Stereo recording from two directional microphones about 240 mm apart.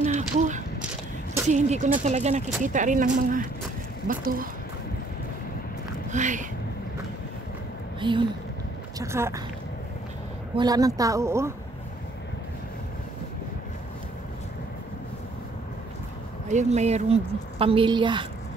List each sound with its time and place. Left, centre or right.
0.0 s a sound: right
1.5 s a woman's voice: right
6.1 s speech: right
8.0 s a woman's voice: centre
10.5 s a woman's voice: centre
16.4 s a woman's voice: right